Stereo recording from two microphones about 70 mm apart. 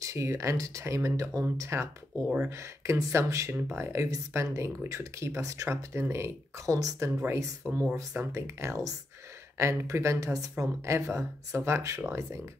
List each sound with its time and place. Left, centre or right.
0.0 s speech: right
2.2 s speech: centre
2.5 s speech: right